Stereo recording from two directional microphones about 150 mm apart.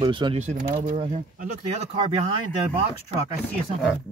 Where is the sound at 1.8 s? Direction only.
40° right (ahead or behind).